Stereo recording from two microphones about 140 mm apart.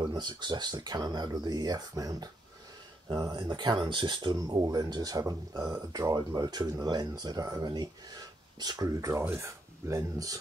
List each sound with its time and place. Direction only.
0.1 s speech: 30° right (ahead or behind)